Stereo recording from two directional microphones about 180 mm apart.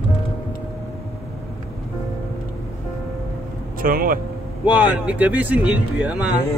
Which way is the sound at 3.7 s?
50° right (ahead or behind).